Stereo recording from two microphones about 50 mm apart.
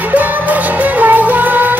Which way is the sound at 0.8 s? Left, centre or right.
Right.